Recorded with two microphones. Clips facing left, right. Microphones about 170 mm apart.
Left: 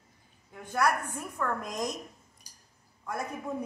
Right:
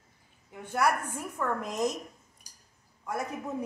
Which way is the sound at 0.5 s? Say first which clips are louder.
Even; 5° right (ahead or behind).